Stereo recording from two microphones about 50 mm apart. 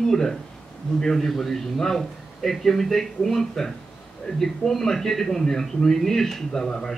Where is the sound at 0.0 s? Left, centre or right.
Centre.